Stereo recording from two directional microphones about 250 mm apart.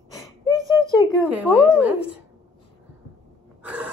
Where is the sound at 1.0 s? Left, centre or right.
Centre.